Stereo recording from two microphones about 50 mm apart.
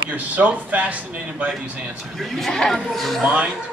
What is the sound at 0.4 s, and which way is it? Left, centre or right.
Speech, right.